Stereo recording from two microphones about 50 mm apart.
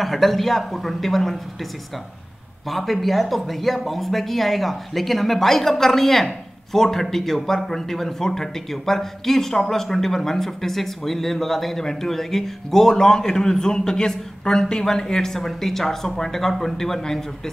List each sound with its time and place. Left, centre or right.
0.0 s speech: centre
2.7 s speech: centre